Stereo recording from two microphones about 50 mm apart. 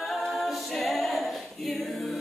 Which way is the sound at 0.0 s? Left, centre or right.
Centre.